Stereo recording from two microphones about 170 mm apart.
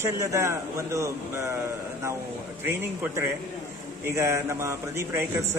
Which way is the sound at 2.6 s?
15° right (ahead or behind).